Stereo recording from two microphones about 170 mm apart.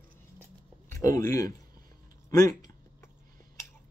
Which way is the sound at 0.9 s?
20° left (ahead or behind).